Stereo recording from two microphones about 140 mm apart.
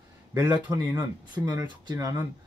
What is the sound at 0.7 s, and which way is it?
Speech, 25° right (ahead or behind).